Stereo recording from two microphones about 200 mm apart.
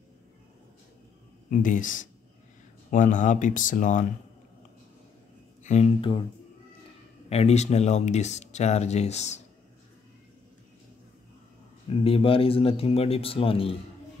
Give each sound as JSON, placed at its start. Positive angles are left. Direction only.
{"t": 1.5, "sound": "speech", "side_deg": 40}
{"t": 5.6, "sound": "speech", "side_deg": 35}
{"t": 7.2, "sound": "speech", "side_deg": 30}
{"t": 11.9, "sound": "a man's voice", "side_deg": 30}